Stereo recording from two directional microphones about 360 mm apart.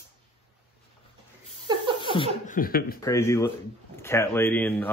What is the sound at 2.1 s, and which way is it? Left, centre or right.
Speech, centre.